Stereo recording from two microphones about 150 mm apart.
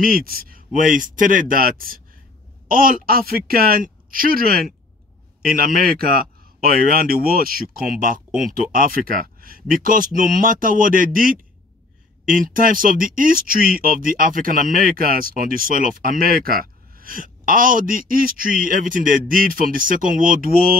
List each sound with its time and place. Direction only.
0.0 s a man's voice: 75° right (ahead or behind)
0.7 s speech: 60° right (ahead or behind)